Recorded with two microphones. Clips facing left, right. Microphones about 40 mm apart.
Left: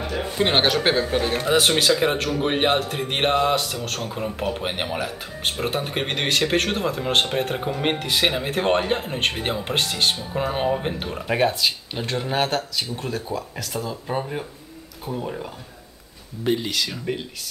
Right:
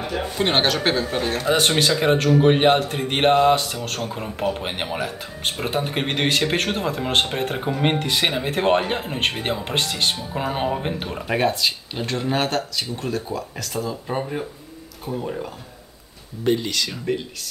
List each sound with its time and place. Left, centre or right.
0.0 s speech: centre